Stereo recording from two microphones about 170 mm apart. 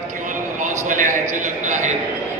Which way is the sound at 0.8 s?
50° right (ahead or behind).